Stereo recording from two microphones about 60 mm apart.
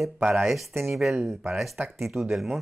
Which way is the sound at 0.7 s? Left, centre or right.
Right.